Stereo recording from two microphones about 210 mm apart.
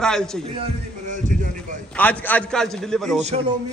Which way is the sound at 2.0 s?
10° left (ahead or behind).